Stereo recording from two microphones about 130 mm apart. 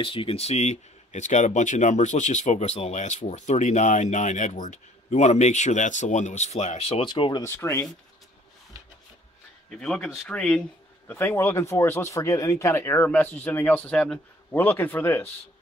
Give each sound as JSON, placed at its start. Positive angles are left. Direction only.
{"t": 0.0, "sound": "speech", "side_deg": 45}
{"t": 7.4, "sound": "speech", "side_deg": 20}
{"t": 9.7, "sound": "speech", "side_deg": 5}
{"t": 11.1, "sound": "speech", "side_deg": 15}